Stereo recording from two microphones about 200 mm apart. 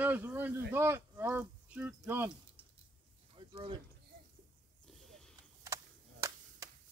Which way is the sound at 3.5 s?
25° right (ahead or behind).